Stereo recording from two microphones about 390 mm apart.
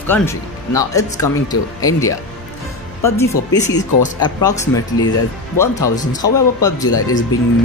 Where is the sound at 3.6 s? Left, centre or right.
Centre.